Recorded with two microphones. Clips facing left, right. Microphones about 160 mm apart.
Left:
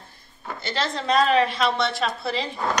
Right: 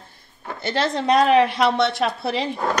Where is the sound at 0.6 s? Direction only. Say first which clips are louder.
Right 5 dB; 60° right (ahead or behind).